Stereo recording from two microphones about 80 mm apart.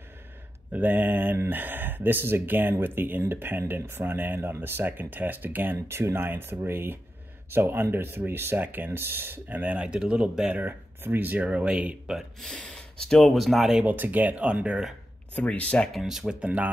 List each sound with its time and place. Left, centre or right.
0.7 s speech: right
10.6 s speech: right
12.2 s speech: centre
13.8 s speech: right
15.3 s speech: centre
15.9 s speech: centre